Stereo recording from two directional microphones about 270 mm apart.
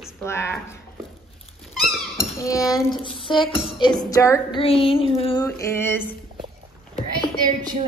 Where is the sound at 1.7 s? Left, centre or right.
Centre.